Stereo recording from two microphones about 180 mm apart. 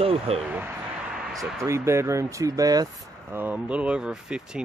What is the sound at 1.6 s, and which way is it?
Speech, 15° right (ahead or behind).